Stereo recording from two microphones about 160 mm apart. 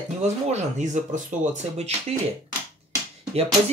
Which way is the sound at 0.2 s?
45° right (ahead or behind).